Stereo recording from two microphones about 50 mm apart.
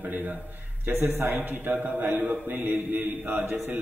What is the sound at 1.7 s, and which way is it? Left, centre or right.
A man's voice, right.